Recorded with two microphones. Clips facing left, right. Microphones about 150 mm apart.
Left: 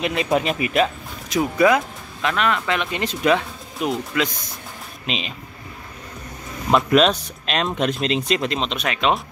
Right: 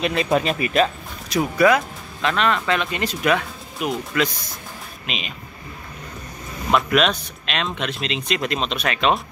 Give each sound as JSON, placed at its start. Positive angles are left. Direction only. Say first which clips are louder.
{"t": 0.0, "sound": "speech", "louder": "right 1 dB", "side_deg": 15}
{"t": 2.2, "sound": "speech", "louder": "right 1 dB", "side_deg": 10}
{"t": 5.0, "sound": "speech", "louder": "left 4 dB", "side_deg": 30}
{"t": 6.7, "sound": "speech", "louder": "left 3 dB", "side_deg": 30}
{"t": 8.4, "sound": "speech", "louder": "even", "side_deg": 20}